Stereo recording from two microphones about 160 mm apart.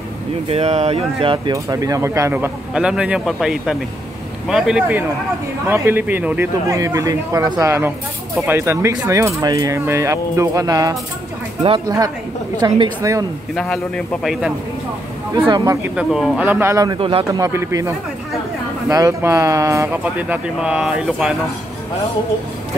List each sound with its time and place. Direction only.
0.5 s speech: 40° right (ahead or behind); by 11.0 s 20° right (ahead or behind)
12.5 s speech: 25° right (ahead or behind)
13.6 s speech: centre (ahead or behind)
15.3 s speech: 25° right (ahead or behind)
16.0 s speech: centre (ahead or behind); by 17.2 s 30° right (ahead or behind)
17.3 s speech: 20° right (ahead or behind); by 21.3 s 5° right (ahead or behind)